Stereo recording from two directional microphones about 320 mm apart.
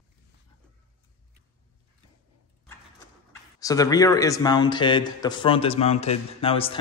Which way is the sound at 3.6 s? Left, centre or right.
Centre.